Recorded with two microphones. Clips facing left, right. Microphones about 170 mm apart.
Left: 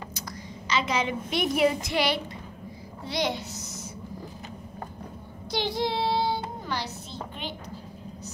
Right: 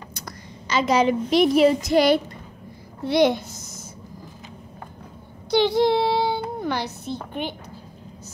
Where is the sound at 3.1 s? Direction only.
55° right (ahead or behind).